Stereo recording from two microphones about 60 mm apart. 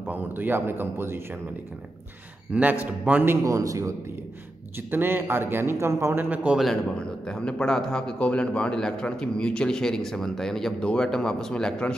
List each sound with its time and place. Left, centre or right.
0.0 s a man's voice: right
2.5 s a man's voice: right
3.4 s a man's voice: right
4.9 s speech: right
6.1 s speech: right
6.6 s speech: centre